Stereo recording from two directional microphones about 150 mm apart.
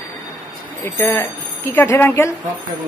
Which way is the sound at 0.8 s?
15° left (ahead or behind).